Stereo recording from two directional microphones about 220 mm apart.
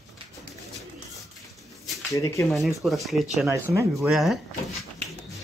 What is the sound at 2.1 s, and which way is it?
Speech, 15° left (ahead or behind).